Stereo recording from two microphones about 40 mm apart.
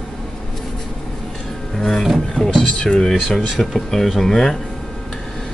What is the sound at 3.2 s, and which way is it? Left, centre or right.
Speech, centre.